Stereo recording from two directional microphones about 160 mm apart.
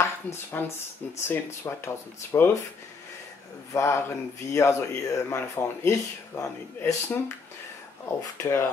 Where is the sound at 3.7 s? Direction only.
15° left (ahead or behind).